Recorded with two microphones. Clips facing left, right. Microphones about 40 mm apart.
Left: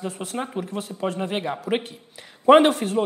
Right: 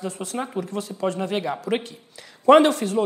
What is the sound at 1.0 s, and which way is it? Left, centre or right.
Speech, centre.